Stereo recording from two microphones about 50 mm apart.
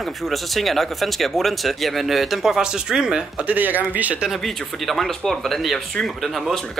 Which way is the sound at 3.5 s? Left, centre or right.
Right.